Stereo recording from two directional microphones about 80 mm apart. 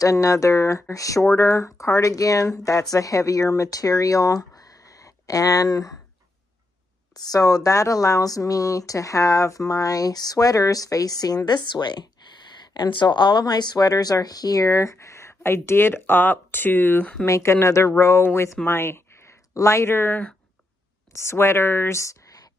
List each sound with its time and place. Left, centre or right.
0.0 s speech: left
7.2 s speech: left
17.2 s speech: left